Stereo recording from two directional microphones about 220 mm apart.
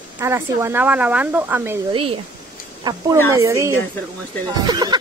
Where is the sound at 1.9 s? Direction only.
25° right (ahead or behind).